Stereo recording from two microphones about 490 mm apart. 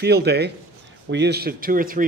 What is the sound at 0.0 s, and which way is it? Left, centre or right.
A man's voice, centre.